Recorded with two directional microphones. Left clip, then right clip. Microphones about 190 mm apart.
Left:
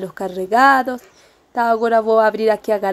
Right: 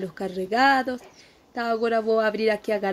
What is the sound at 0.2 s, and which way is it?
A woman's voice, 15° left (ahead or behind).